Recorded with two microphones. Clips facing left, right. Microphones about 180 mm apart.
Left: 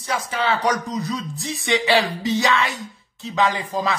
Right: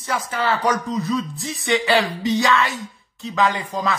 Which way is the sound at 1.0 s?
Centre (ahead or behind).